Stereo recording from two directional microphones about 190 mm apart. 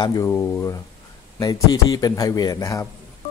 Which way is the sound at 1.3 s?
20° left (ahead or behind).